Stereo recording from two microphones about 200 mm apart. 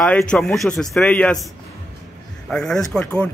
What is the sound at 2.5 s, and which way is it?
Speech, 5° left (ahead or behind).